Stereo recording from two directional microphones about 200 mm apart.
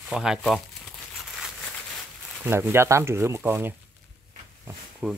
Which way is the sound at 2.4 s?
10° right (ahead or behind).